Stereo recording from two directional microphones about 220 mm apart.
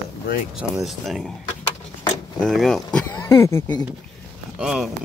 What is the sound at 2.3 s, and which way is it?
Speech, centre (ahead or behind).